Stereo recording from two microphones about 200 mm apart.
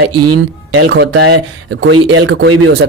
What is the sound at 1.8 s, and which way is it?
Speech, 75° right (ahead or behind).